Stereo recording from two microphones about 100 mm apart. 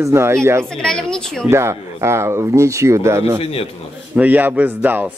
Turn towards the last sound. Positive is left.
turn(degrees=-20)  # may be behind; listen again after turning